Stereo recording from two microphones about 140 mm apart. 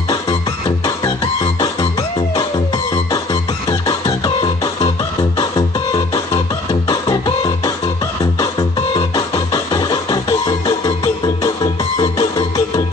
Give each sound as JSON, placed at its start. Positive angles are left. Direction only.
{"t": 1.2, "sound": "music", "side_deg": 35}